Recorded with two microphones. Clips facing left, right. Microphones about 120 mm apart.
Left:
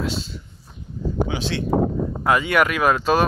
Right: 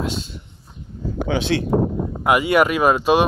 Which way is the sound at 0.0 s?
50° right (ahead or behind).